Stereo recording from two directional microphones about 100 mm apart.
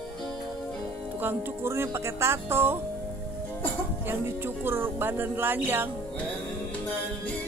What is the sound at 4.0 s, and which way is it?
Speech, 20° right (ahead or behind).